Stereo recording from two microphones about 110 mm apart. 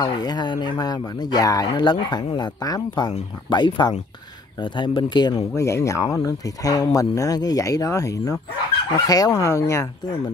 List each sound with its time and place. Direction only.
0.0 s speech: 40° left (ahead or behind)